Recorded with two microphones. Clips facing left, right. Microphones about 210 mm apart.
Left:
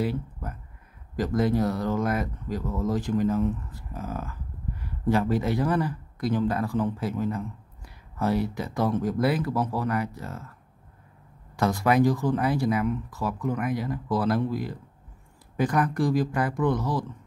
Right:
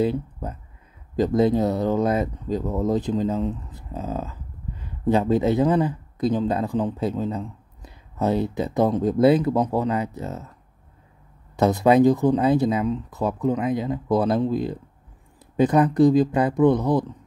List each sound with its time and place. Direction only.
0.0 s a sound: 20° right (ahead or behind)
1.1 s speech: 20° right (ahead or behind)
11.5 s speech: 20° right (ahead or behind)